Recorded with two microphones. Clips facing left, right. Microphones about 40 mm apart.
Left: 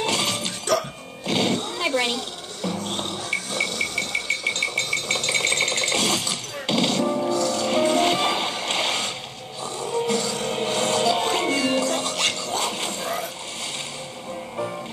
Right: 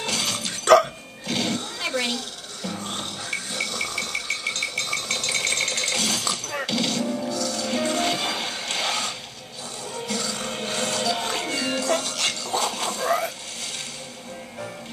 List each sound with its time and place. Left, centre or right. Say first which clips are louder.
0.0 s music: left 3 dB; left
10.4 s a sound: left 5 dB; centre
10.7 s music: left 4 dB; left